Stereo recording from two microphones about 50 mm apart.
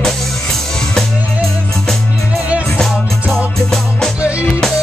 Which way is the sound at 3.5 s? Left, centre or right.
Centre.